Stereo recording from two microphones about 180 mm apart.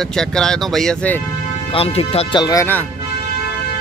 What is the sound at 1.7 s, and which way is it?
Speech, 35° left (ahead or behind).